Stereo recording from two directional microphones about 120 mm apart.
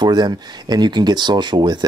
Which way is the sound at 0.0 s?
35° right (ahead or behind).